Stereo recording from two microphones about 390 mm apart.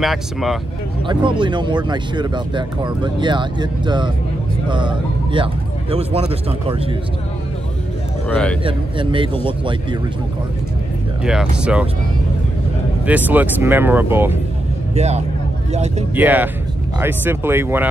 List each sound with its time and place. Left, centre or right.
0.0 s speech: centre
1.0 s speech: centre
8.3 s speech: centre
8.6 s speech: centre
11.2 s speech: centre
13.0 s speech: centre
15.0 s speech: centre
16.2 s speech: centre